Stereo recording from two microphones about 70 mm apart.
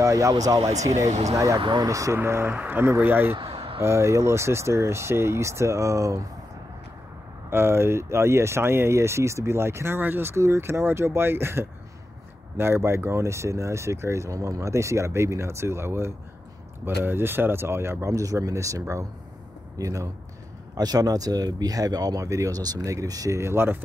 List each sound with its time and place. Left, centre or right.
0.0 s speech: right
2.2 s speech: right
2.5 s speech: right
3.8 s speech: right
7.4 s speech: right
18.1 s speech: right
20.7 s speech: right
23.3 s speech: right